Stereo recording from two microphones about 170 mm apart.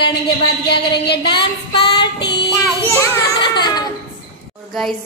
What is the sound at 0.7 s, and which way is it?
Speech, 75° left (ahead or behind).